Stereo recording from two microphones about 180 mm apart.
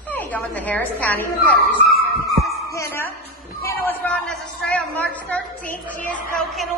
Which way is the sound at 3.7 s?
15° left (ahead or behind).